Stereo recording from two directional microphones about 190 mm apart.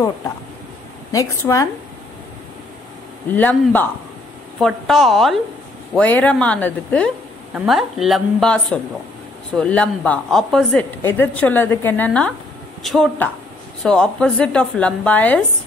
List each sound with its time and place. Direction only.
1.1 s a woman's voice: 20° left (ahead or behind)
3.3 s a woman's voice: 10° left (ahead or behind)